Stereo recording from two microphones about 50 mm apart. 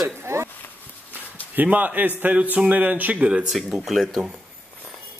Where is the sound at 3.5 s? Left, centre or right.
Centre.